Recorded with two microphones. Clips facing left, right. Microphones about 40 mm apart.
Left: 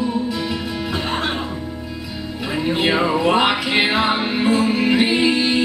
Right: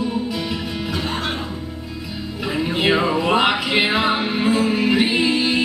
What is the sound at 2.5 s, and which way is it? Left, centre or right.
Music, centre.